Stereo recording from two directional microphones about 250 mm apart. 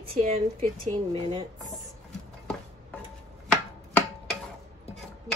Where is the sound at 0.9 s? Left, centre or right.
Right.